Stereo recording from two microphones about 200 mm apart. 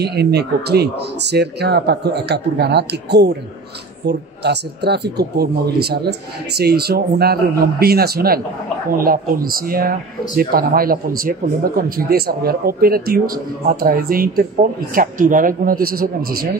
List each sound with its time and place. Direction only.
0.0 s speech: 55° right (ahead or behind)